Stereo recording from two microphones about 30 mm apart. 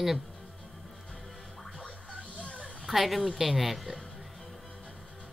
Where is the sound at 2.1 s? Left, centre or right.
Left.